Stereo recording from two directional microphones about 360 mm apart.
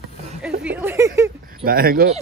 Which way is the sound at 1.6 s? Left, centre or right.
Right.